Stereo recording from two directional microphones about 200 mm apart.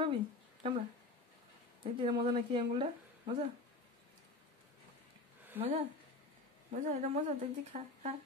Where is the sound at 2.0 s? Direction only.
25° right (ahead or behind).